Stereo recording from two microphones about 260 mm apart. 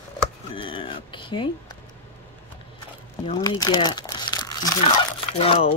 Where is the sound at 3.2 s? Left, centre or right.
Left.